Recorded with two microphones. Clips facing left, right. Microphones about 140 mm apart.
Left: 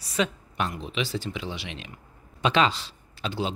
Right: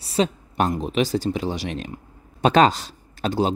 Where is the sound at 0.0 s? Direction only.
30° right (ahead or behind).